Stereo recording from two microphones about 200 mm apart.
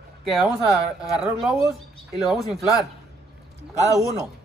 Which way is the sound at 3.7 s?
15° left (ahead or behind).